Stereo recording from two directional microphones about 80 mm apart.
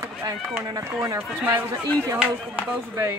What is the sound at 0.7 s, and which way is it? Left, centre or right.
Speech, right.